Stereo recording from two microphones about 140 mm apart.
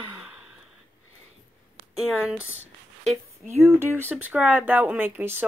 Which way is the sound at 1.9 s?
5° right (ahead or behind).